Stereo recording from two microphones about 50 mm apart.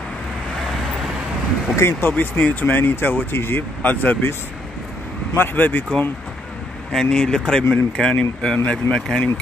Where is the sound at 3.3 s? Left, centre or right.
Left.